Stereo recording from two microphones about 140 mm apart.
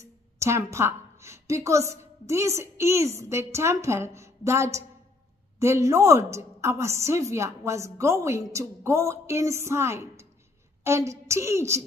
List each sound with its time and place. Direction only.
0.0 s a woman's voice: 20° right (ahead or behind)